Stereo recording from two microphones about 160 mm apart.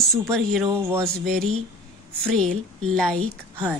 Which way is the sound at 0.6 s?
15° right (ahead or behind).